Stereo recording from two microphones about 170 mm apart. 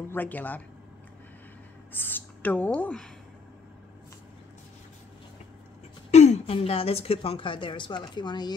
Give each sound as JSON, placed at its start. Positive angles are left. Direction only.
{"t": 0.1, "sound": "a man's voice", "side_deg": 10}
{"t": 1.9, "sound": "speech", "side_deg": 10}
{"t": 6.1, "sound": "a woman's voice", "side_deg": 40}